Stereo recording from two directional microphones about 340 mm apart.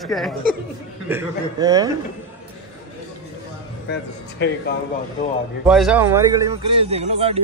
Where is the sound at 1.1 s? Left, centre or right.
Centre.